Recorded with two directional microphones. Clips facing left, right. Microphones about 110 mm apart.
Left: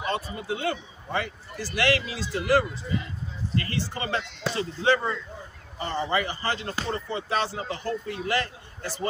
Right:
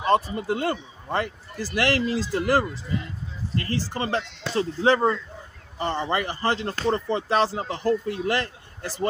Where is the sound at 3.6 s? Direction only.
35° right (ahead or behind).